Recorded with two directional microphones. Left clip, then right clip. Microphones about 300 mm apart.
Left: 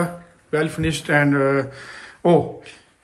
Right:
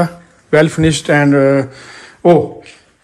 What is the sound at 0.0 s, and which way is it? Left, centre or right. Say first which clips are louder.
Speech: right 8 dB; centre.